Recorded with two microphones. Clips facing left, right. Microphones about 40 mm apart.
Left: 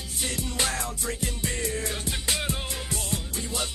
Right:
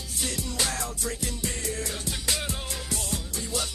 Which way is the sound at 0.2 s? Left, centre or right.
Left.